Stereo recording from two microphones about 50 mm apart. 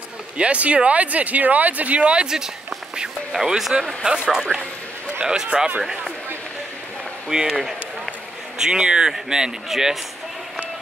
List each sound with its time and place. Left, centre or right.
0.4 s speech: right
2.2 s a man's voice: centre
4.0 s speech: right
5.2 s a man's voice: centre
7.2 s run: centre
8.5 s a man's voice: centre